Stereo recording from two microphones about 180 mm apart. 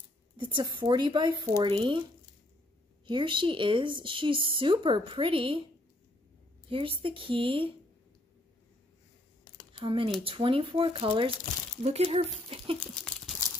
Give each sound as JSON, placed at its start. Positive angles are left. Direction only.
{"t": 0.4, "sound": "speech", "side_deg": -25}
{"t": 3.1, "sound": "speech", "side_deg": -25}
{"t": 6.7, "sound": "speech", "side_deg": -30}
{"t": 9.8, "sound": "speech", "side_deg": -25}
{"t": 12.8, "sound": "crumpling", "side_deg": 5}